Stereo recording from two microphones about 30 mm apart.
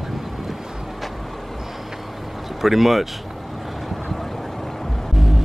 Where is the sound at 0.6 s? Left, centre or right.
Centre.